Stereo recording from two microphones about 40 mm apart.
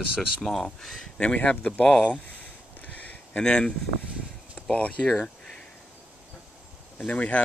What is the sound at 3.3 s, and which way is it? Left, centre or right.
Speech, left.